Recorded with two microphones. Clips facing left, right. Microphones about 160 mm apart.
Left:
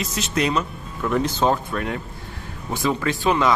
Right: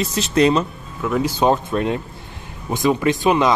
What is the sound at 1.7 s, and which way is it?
Speech, 20° right (ahead or behind).